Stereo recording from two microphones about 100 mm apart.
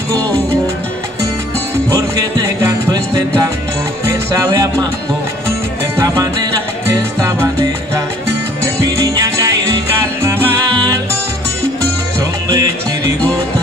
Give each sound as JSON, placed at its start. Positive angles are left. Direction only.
{"t": 2.0, "sound": "music", "side_deg": -35}
{"t": 5.9, "sound": "music", "side_deg": -35}
{"t": 8.9, "sound": "music", "side_deg": -35}
{"t": 10.2, "sound": "music", "side_deg": -25}